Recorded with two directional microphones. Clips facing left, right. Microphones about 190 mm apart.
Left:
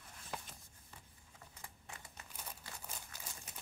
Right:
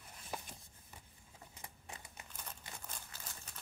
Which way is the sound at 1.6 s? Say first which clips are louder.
Right 2 dB; 20° right (ahead or behind).